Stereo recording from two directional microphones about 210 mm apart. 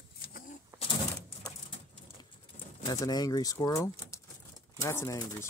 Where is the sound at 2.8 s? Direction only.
20° left (ahead or behind).